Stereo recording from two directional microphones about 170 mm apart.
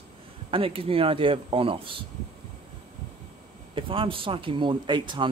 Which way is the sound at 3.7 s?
30° right (ahead or behind).